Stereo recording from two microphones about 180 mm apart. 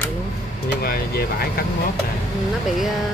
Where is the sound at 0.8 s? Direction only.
55° left (ahead or behind).